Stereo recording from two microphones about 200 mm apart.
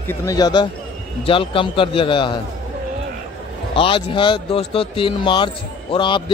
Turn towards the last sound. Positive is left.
turn(degrees=25)  # may be behind; listen again after turning